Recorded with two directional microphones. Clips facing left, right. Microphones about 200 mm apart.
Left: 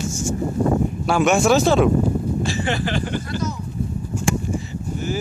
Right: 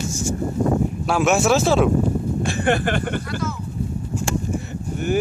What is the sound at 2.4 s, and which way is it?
Speech, 55° right (ahead or behind).